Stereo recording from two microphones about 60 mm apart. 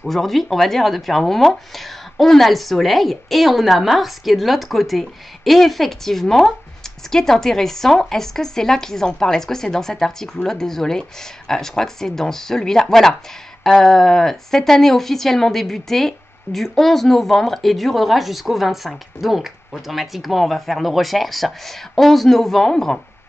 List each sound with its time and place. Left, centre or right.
0.0 s speech: centre